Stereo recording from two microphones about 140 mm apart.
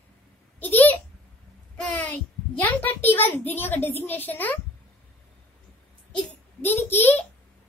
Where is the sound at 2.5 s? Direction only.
15° left (ahead or behind).